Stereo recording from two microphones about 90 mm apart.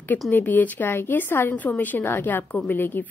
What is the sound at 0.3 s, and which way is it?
A woman's voice, 20° left (ahead or behind).